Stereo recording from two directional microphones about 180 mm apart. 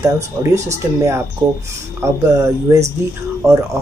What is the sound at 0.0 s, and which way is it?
Speech, 15° right (ahead or behind).